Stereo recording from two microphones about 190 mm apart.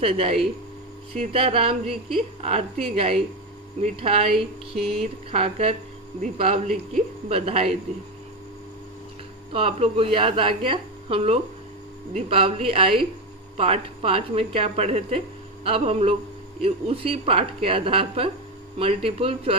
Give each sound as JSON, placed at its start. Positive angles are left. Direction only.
{"t": 0.0, "sound": "a woman's voice", "side_deg": -30}
{"t": 9.5, "sound": "a woman's voice", "side_deg": -30}